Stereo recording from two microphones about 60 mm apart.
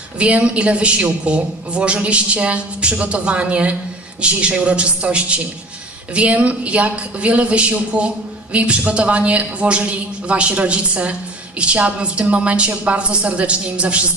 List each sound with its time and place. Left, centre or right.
0.2 s a man's voice: centre